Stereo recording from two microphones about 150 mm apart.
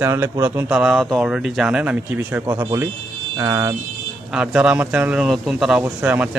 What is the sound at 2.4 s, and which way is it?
A man's voice, 20° right (ahead or behind).